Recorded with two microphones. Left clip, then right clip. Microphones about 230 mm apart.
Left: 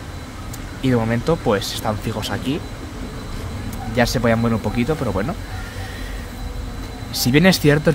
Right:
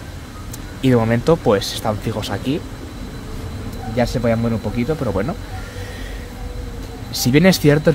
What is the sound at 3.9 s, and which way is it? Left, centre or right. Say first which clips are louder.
Speech: left 1 dB; centre.